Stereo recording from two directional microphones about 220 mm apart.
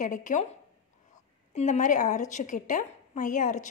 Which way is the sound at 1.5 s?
30° left (ahead or behind).